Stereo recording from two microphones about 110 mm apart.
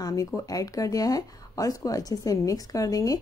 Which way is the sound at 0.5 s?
30° left (ahead or behind).